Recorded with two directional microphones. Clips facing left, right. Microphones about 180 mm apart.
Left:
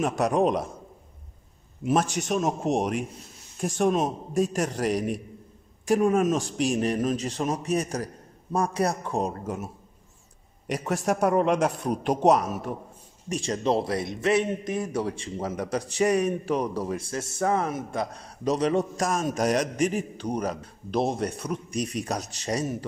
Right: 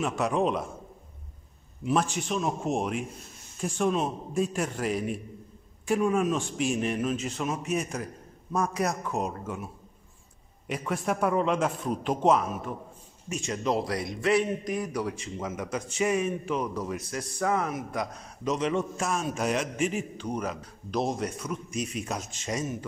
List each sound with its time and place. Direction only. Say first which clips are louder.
0.0 s a man's voice: left 3 dB; 45° left (ahead or behind)
1.9 s a man's voice: left 3 dB; 45° left (ahead or behind)
11.1 s a man's voice: left 4 dB; 40° left (ahead or behind)
20.3 s a man's voice: left 4 dB; 30° left (ahead or behind)